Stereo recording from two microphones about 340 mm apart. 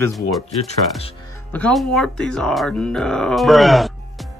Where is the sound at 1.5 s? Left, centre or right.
Centre.